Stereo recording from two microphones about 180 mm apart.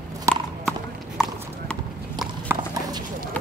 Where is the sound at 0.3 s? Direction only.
15° right (ahead or behind).